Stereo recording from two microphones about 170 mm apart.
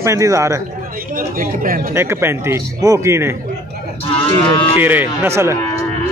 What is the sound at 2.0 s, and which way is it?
Speech, 15° right (ahead or behind).